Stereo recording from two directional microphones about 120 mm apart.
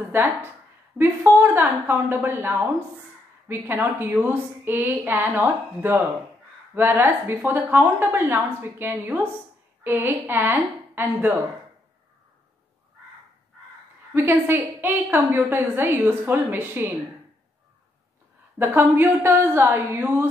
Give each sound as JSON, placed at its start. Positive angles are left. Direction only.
{"t": 0.1, "sound": "a woman's voice", "side_deg": -20}
{"t": 14.1, "sound": "a woman's voice", "side_deg": -20}
{"t": 18.6, "sound": "a woman's voice", "side_deg": -20}